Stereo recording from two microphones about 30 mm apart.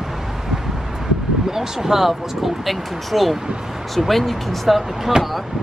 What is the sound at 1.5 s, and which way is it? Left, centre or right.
Speech, centre.